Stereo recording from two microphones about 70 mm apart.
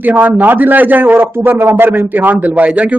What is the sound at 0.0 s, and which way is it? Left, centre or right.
A man's voice, right.